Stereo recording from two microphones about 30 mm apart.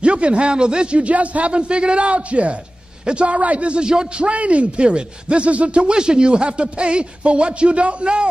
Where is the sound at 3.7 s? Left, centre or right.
Right.